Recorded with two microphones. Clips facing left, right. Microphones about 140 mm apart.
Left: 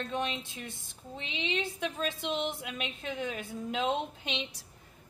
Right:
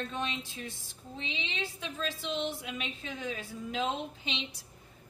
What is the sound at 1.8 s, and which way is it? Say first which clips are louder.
Speech: left 3 dB; 55° left (ahead or behind).